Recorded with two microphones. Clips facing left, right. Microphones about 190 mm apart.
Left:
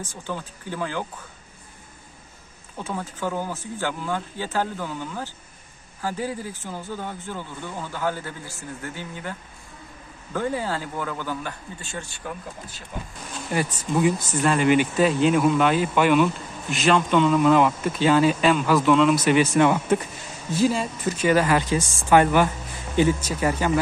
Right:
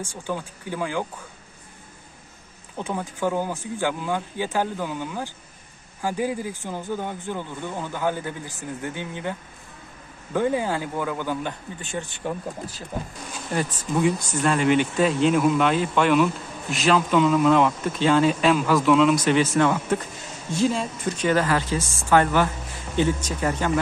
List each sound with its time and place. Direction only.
0.0 s speech: 10° right (ahead or behind)
2.8 s speech: 15° right (ahead or behind)
13.5 s speech: 5° left (ahead or behind)
20.5 s speech: 5° left (ahead or behind)